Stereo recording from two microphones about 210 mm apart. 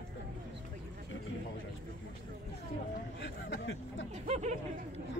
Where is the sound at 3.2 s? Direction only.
60° left (ahead or behind).